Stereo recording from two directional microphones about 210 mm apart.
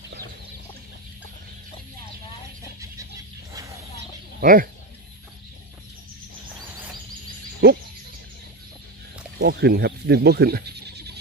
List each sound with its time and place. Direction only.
4.4 s speech: 40° right (ahead or behind)
9.4 s speech: 50° right (ahead or behind)